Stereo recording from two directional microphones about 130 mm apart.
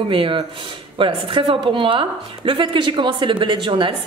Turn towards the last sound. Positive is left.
turn(degrees=-40)  # may be behind; listen again after turning